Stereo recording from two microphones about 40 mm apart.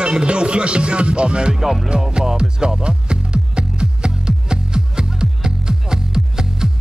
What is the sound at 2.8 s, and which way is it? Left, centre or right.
Music, right.